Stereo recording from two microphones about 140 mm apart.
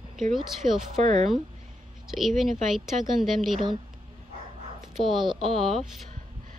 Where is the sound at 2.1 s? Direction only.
Centre (ahead or behind).